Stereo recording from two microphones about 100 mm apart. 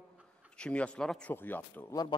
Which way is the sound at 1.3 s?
20° left (ahead or behind).